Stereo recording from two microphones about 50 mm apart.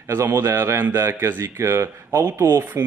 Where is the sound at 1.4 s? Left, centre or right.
Right.